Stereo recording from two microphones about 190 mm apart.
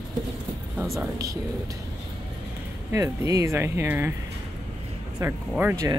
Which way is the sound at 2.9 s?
15° right (ahead or behind).